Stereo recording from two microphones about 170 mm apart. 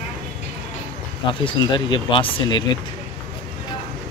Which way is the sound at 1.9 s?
30° left (ahead or behind).